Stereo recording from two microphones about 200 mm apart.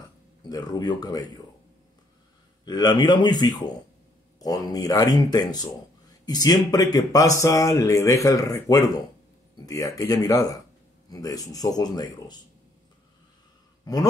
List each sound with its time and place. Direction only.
0.5 s speech: 20° left (ahead or behind)
2.6 s speech: 20° left (ahead or behind)